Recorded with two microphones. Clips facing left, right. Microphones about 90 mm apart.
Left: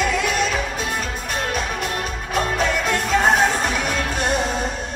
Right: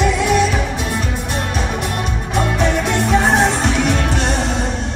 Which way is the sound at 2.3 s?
20° right (ahead or behind).